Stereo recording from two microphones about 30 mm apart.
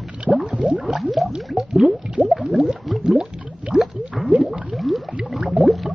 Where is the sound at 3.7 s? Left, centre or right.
Right.